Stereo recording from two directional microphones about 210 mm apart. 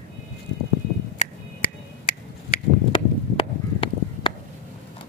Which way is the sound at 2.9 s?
25° left (ahead or behind).